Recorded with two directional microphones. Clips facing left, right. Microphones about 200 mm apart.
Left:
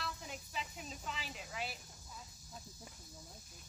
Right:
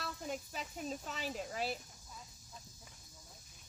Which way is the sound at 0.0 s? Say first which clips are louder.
Right 5 dB; 45° right (ahead or behind).